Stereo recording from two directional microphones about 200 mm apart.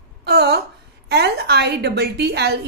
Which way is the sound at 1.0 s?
55° right (ahead or behind).